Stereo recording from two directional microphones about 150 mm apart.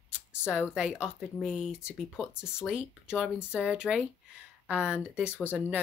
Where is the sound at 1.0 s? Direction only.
5° right (ahead or behind).